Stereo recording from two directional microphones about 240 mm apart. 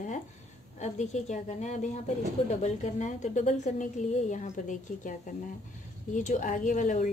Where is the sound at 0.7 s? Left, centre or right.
Left.